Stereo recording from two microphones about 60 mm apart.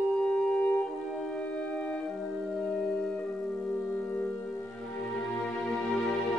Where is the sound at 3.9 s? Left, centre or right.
Left.